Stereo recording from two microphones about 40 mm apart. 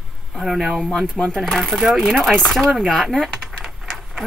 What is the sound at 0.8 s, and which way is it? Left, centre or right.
Speech, centre.